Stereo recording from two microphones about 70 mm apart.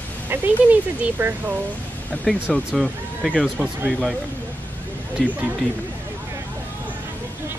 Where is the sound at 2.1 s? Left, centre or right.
Centre.